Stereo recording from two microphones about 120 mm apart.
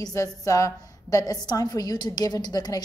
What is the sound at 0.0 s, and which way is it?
A woman's voice, 30° left (ahead or behind).